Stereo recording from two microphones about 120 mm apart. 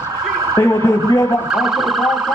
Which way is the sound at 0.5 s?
25° left (ahead or behind).